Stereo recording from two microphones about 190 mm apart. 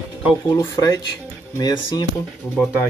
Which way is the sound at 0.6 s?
20° left (ahead or behind).